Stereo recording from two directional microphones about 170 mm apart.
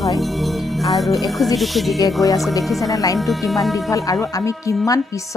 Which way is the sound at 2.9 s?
20° left (ahead or behind).